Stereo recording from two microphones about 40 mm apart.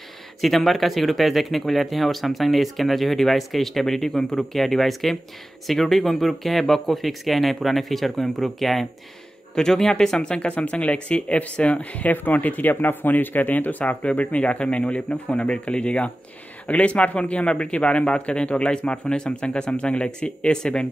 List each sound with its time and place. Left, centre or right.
0.4 s speech: centre; by 13.9 s left
14.1 s a man's voice: left